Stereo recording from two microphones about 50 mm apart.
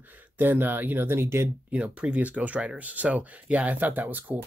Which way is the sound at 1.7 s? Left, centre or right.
Right.